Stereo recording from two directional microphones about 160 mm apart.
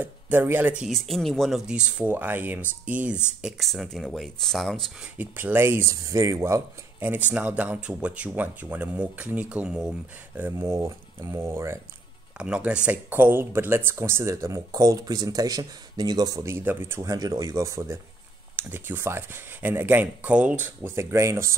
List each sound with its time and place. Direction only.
0.0 s speech: 10° right (ahead or behind)
5.1 s speech: 10° right (ahead or behind)